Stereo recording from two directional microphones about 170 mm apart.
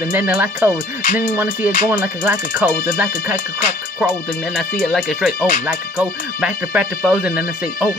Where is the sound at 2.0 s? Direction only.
15° right (ahead or behind).